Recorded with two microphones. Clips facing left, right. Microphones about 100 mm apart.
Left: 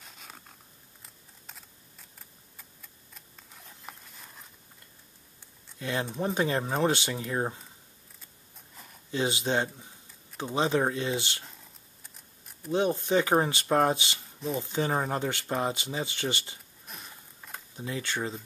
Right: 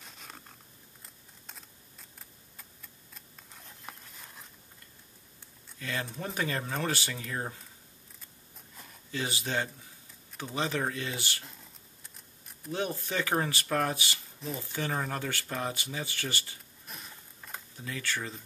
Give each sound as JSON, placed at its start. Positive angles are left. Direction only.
{"t": 0.0, "sound": "zipper", "side_deg": 0}
{"t": 1.0, "sound": "computer keyboard", "side_deg": 0}
{"t": 5.8, "sound": "speech", "side_deg": 25}
{"t": 9.1, "sound": "speech", "side_deg": 25}
{"t": 11.4, "sound": "a sound", "side_deg": 0}
{"t": 12.7, "sound": "speech", "side_deg": 20}
{"t": 16.8, "sound": "a sound", "side_deg": 0}
{"t": 17.7, "sound": "speech", "side_deg": 25}